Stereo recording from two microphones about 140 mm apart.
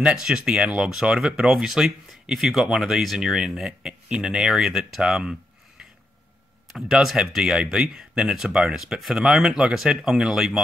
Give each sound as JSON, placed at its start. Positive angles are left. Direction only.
{"t": 0.0, "sound": "speech", "side_deg": -5}
{"t": 6.7, "sound": "speech", "side_deg": -5}